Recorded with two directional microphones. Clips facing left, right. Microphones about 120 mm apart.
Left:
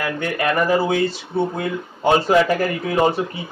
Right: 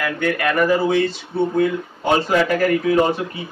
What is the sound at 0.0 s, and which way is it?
Speech, 25° left (ahead or behind).